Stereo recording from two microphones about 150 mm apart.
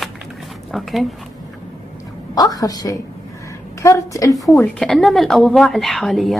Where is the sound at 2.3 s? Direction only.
25° left (ahead or behind).